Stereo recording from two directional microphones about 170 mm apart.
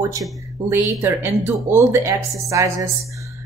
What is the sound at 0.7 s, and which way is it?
Speech, 15° right (ahead or behind).